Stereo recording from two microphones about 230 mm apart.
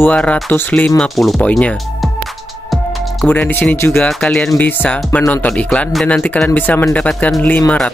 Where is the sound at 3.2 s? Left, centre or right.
Centre.